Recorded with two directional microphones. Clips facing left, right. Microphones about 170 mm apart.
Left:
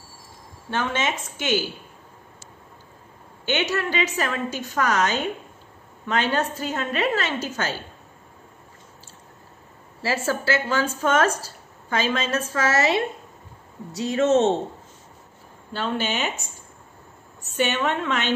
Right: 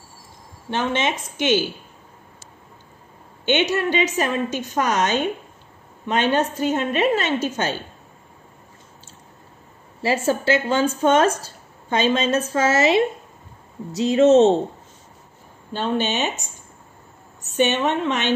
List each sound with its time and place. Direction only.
0.7 s speech: 20° right (ahead or behind)
3.4 s speech: 20° right (ahead or behind)
10.0 s speech: 20° right (ahead or behind)
15.7 s speech: 20° right (ahead or behind)
17.6 s speech: 20° right (ahead or behind)